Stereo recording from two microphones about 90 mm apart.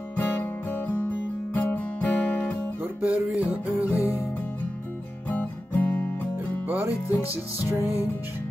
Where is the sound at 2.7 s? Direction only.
20° right (ahead or behind).